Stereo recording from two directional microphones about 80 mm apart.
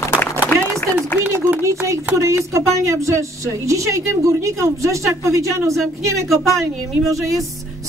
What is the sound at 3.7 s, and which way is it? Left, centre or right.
A woman's voice, right.